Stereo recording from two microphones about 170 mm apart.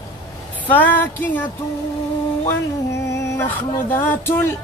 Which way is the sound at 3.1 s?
10° left (ahead or behind).